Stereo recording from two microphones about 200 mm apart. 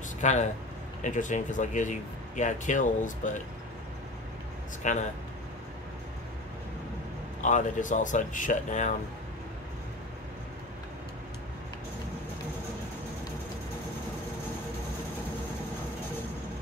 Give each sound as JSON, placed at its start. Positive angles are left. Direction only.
{"t": 0.2, "sound": "speech", "side_deg": 35}
{"t": 4.8, "sound": "speech", "side_deg": 40}
{"t": 7.4, "sound": "speech", "side_deg": 35}